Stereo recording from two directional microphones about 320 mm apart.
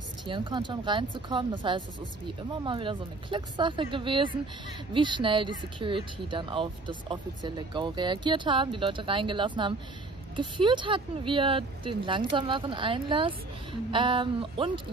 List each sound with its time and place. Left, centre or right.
0.3 s speech: centre